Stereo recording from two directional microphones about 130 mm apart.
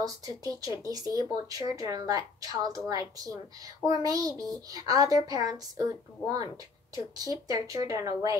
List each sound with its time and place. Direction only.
0.0 s a woman's voice: 25° right (ahead or behind)